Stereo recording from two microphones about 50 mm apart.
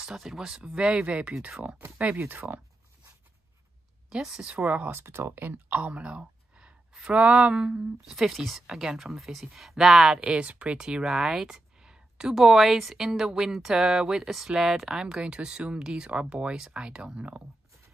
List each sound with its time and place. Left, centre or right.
0.2 s speech: centre
2.1 s speech: right
4.1 s speech: centre
4.5 s speech: right
4.9 s speech: right
5.3 s speech: right; by 10.4 s centre
10.4 s speech: right